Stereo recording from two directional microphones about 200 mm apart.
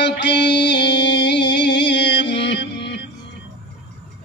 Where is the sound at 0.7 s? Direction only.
60° left (ahead or behind).